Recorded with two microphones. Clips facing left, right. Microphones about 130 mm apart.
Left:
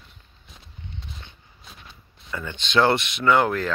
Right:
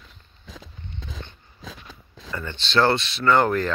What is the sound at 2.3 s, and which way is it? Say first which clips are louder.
Speech: even; 5° left (ahead or behind).